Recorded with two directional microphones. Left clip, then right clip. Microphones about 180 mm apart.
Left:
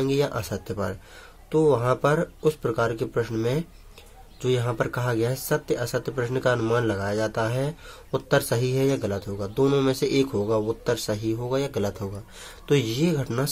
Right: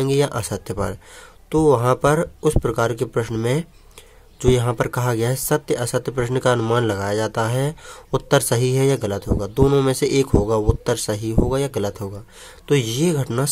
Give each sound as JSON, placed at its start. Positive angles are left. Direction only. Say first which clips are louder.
{"t": 0.0, "sound": "speech", "louder": "right 5 dB", "side_deg": -30}